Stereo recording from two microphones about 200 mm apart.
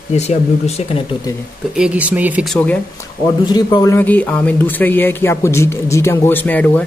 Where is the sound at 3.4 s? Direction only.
20° left (ahead or behind).